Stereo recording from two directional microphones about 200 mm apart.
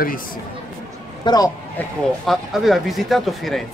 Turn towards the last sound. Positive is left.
turn(degrees=0)  # may be behind; listen again after turning